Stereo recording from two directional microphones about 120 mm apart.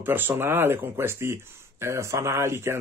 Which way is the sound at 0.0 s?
15° right (ahead or behind).